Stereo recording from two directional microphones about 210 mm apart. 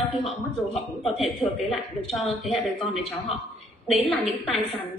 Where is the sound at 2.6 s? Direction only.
30° left (ahead or behind).